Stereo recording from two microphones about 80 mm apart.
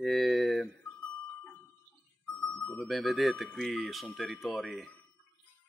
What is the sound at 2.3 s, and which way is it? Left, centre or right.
Music, centre.